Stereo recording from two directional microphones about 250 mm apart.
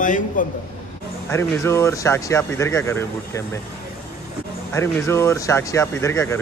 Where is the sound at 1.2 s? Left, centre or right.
Centre.